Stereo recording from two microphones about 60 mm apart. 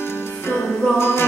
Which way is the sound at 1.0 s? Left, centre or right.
Left.